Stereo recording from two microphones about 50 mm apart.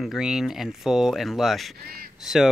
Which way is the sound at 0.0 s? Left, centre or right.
Centre.